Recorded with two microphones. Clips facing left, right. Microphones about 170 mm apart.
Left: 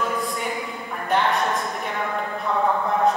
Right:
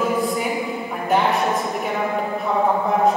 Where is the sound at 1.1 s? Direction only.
Centre (ahead or behind).